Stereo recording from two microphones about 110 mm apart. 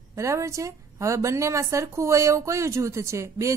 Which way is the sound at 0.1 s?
25° right (ahead or behind).